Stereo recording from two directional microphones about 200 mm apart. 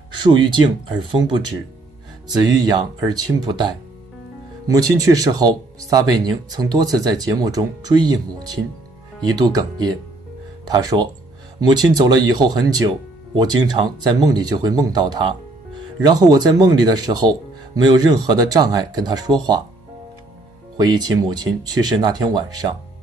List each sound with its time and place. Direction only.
0.2 s speech: 25° right (ahead or behind)
20.7 s speech: 20° right (ahead or behind)